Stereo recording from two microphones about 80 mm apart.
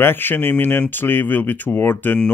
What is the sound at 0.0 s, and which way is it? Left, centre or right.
Speech, left.